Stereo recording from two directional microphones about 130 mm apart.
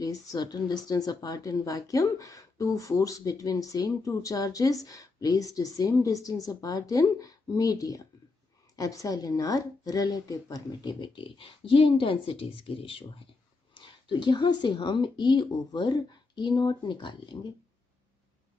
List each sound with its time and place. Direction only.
0.0 s a woman's voice: 30° left (ahead or behind)